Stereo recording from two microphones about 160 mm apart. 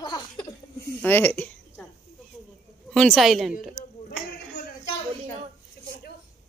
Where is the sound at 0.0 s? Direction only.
30° left (ahead or behind).